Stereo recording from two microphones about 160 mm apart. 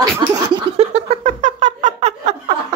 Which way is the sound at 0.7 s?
40° right (ahead or behind).